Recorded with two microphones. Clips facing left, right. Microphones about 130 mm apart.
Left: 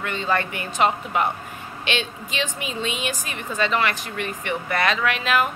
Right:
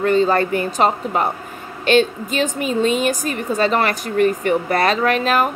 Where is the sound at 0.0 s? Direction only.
40° right (ahead or behind).